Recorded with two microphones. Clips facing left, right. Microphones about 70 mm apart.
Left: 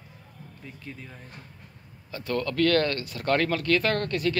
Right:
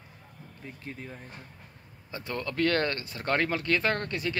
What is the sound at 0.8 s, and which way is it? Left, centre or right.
A man's voice, right.